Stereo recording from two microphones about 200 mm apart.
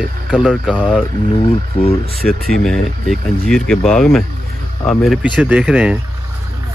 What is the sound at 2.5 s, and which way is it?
Speech, 5° left (ahead or behind).